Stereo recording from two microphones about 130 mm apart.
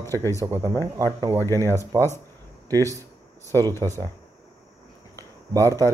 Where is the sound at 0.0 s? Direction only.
20° left (ahead or behind).